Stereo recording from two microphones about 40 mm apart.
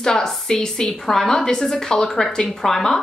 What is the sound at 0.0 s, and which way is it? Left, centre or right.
Speech, centre.